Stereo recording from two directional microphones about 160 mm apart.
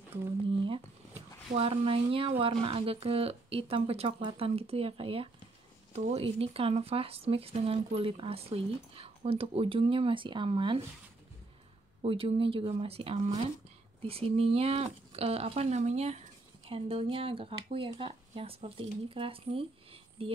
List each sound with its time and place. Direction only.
1.5 s speech: 35° right (ahead or behind)
12.0 s speech: 35° right (ahead or behind)